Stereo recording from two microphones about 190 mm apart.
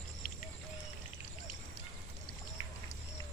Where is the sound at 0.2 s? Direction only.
45° left (ahead or behind).